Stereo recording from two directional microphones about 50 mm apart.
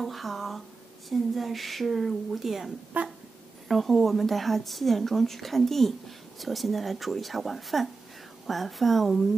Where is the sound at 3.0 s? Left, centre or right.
Right.